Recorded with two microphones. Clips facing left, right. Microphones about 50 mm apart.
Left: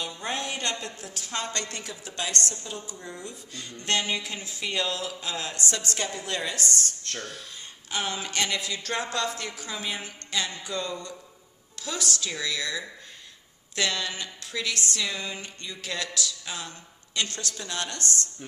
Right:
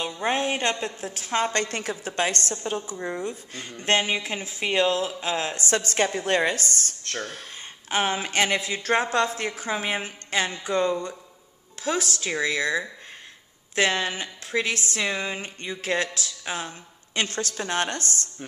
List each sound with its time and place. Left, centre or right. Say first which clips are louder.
0.3 s a woman's voice: right 6 dB; right
2.9 s a woman's voice: right 9 dB; right